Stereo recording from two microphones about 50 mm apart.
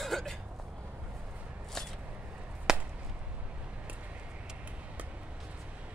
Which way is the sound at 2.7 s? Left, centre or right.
Centre.